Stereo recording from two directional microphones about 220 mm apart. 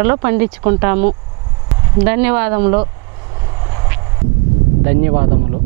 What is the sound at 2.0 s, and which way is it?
Speech, 10° right (ahead or behind).